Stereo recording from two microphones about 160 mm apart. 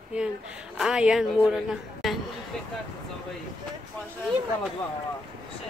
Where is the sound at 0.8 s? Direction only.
5° right (ahead or behind).